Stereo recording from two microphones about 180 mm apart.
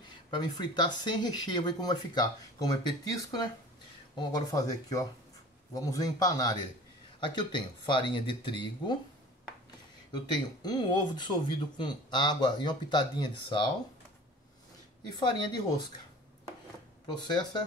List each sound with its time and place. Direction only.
0.3 s speech: 25° left (ahead or behind)
10.1 s speech: 25° left (ahead or behind)
15.1 s speech: 25° left (ahead or behind)
17.1 s speech: 25° left (ahead or behind)